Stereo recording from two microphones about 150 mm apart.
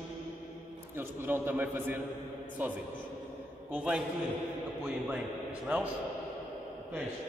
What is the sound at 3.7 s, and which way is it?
Speech, 10° right (ahead or behind).